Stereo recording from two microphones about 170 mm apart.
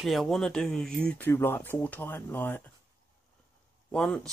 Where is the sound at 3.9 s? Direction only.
5° left (ahead or behind).